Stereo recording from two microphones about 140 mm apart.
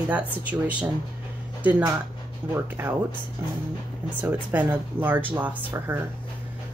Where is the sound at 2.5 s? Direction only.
15° right (ahead or behind).